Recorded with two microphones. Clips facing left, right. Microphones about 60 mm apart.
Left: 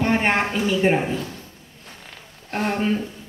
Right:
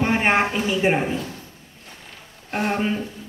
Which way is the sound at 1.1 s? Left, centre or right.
Right.